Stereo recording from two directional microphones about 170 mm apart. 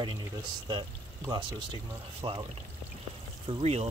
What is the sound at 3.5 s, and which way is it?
Speech, 35° right (ahead or behind).